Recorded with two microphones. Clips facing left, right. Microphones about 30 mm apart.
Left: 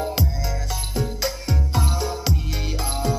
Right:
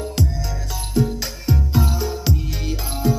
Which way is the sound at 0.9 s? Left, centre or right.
Centre.